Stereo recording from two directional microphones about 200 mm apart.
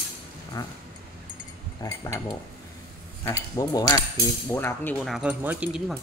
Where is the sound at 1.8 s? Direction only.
15° left (ahead or behind).